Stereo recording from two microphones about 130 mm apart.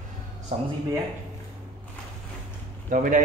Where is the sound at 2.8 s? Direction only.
90° right.